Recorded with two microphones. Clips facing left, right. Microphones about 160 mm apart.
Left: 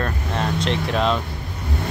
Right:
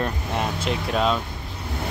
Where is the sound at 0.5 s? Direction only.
5° right (ahead or behind).